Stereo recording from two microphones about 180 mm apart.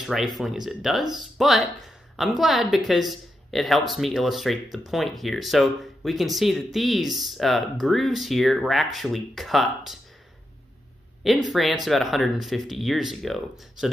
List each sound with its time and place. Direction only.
0.0 s speech: centre (ahead or behind)
11.2 s speech: centre (ahead or behind)